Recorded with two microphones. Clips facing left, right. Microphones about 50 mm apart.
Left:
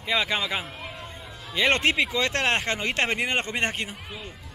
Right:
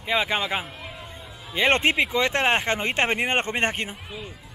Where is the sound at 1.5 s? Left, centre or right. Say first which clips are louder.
Right 2 dB; right.